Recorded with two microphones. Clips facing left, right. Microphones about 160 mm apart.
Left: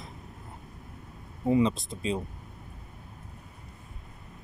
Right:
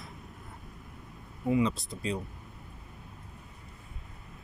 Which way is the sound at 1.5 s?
20° left (ahead or behind).